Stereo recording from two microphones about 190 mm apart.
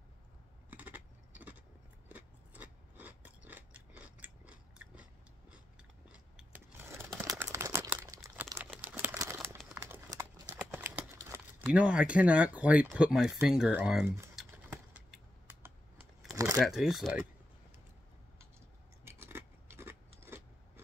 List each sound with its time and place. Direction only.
0.7 s a sound: 10° right (ahead or behind)
2.0 s gears: 10° right (ahead or behind)
6.1 s a sound: 5° right (ahead or behind)
7.2 s crumpling: 15° right (ahead or behind)
8.8 s a sound: 10° right (ahead or behind)
10.5 s horse: 10° right (ahead or behind)
11.1 s speech: 10° right (ahead or behind)
14.3 s keys jangling: 5° right (ahead or behind)
16.6 s speech: centre (ahead or behind)
19.0 s scissors: 10° right (ahead or behind)